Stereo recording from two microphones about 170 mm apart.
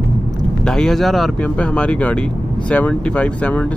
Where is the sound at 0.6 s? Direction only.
5° left (ahead or behind).